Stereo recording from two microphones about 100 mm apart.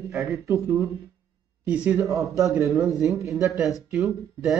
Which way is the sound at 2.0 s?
35° right (ahead or behind).